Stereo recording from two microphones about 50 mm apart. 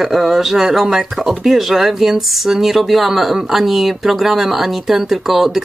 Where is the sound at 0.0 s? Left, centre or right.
Centre.